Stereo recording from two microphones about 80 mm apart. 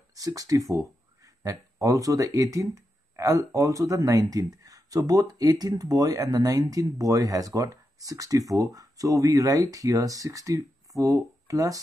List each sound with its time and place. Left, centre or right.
0.1 s speech: right